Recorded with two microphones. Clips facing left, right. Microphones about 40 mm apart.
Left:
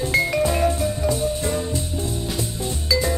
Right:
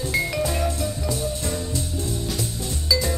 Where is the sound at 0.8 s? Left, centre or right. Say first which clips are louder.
Left 5 dB; left.